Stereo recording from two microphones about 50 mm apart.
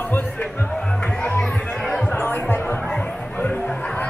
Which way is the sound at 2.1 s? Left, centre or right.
Left.